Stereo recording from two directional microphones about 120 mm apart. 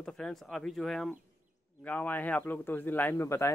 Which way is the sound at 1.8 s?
15° left (ahead or behind).